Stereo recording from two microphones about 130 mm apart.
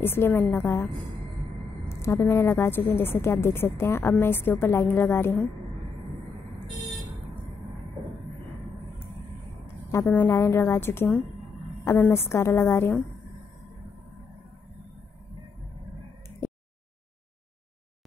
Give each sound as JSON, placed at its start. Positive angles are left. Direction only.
{"t": 0.0, "sound": "a woman's voice", "side_deg": 15}
{"t": 1.9, "sound": "a woman's voice", "side_deg": 20}
{"t": 9.8, "sound": "a woman's voice", "side_deg": 20}